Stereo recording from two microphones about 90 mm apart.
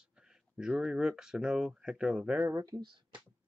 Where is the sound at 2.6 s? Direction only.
45° right (ahead or behind).